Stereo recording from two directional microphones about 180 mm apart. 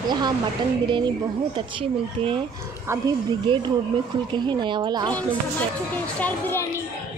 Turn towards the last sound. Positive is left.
turn(degrees=10)  # may be behind; listen again after turning